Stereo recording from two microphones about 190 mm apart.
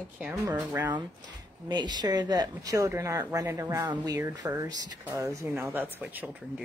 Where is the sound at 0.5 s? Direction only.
15° right (ahead or behind).